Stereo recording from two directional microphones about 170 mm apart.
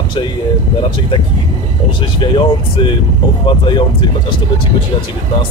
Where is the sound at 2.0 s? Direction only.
30° left (ahead or behind).